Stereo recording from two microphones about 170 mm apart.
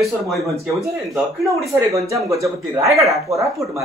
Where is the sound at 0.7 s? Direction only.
15° right (ahead or behind).